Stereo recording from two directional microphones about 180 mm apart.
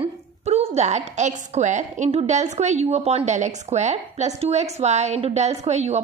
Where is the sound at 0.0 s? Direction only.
35° right (ahead or behind).